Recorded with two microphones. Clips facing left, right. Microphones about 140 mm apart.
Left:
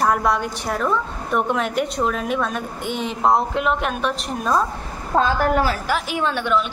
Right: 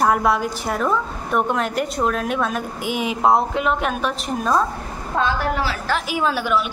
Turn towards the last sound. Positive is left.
turn(degrees=-5)  # may be behind; listen again after turning